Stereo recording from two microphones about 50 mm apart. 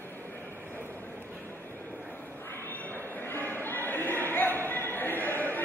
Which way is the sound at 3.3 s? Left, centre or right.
Left.